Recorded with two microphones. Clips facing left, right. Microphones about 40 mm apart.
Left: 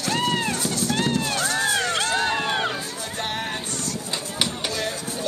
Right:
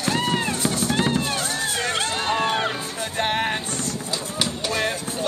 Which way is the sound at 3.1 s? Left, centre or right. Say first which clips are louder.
Right 6 dB; right.